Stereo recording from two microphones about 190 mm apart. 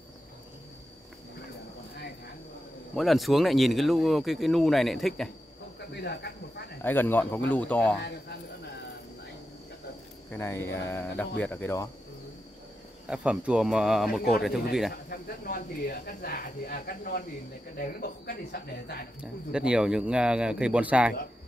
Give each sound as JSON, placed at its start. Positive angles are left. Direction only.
{"t": 3.0, "sound": "speech", "side_deg": 0}
{"t": 5.8, "sound": "speech", "side_deg": 60}
{"t": 6.8, "sound": "speech", "side_deg": 10}
{"t": 10.3, "sound": "speech", "side_deg": 10}
{"t": 13.1, "sound": "speech", "side_deg": -5}
{"t": 15.0, "sound": "speech", "side_deg": 50}
{"t": 19.5, "sound": "speech", "side_deg": -5}